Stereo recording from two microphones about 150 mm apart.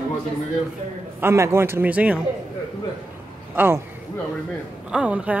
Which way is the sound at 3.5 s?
15° right (ahead or behind).